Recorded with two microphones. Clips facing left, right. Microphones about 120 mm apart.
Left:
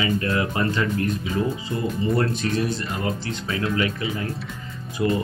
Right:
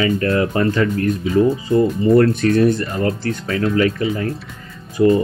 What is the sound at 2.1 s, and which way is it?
Speech, 60° right (ahead or behind).